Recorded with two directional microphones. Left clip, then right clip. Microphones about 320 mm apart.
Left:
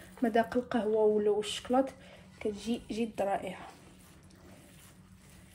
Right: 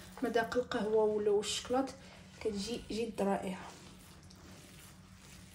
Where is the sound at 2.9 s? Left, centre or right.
Left.